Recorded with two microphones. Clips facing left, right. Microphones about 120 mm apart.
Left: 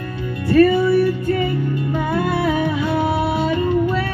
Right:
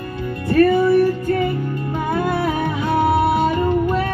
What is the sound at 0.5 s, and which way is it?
Music, 45° right (ahead or behind).